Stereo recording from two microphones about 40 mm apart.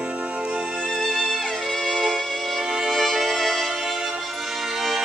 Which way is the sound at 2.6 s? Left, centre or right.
Centre.